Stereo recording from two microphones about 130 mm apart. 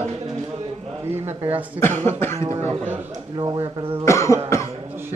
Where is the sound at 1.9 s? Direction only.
60° right (ahead or behind).